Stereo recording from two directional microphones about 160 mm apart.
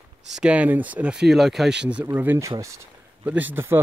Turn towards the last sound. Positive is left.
turn(degrees=-15)  # may be behind; listen again after turning